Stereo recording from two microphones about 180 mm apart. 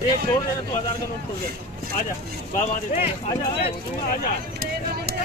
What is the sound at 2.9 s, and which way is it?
Speech, 35° left (ahead or behind).